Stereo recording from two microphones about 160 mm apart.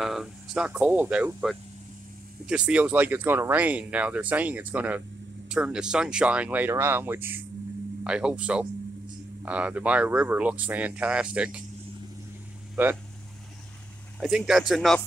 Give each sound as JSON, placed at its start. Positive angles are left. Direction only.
{"t": 0.0, "sound": "speech", "side_deg": 0}
{"t": 14.2, "sound": "speech", "side_deg": -5}